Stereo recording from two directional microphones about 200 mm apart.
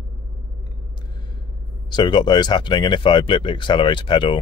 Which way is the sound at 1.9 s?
20° left (ahead or behind).